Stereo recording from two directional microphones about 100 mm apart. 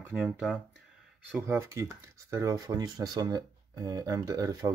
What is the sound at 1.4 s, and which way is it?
Speech, 30° right (ahead or behind).